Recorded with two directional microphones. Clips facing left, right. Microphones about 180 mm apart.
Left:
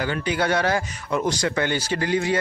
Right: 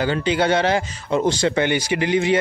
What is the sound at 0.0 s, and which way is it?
Speech, 25° right (ahead or behind).